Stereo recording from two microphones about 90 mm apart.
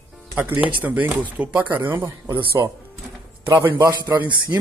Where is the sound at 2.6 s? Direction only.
40° right (ahead or behind).